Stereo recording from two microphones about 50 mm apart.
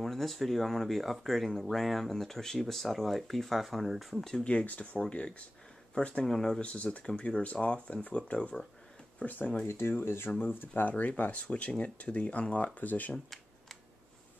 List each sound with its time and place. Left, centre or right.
0.0 s speech: centre
4.5 s speech: left
6.2 s speech: centre
6.6 s speech: left
9.2 s speech: left
9.7 s speech: left
10.8 s speech: left